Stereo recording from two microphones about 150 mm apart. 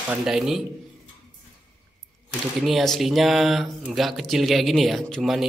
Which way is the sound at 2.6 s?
Centre (ahead or behind).